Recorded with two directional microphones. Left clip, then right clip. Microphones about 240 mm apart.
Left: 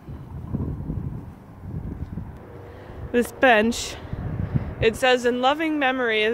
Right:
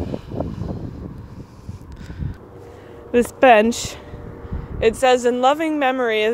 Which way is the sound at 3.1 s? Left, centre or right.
Centre.